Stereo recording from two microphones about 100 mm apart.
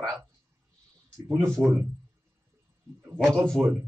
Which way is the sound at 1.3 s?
Centre (ahead or behind).